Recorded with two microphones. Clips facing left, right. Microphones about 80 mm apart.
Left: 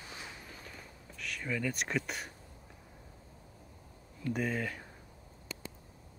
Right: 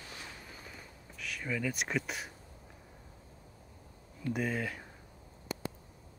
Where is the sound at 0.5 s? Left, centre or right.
Centre.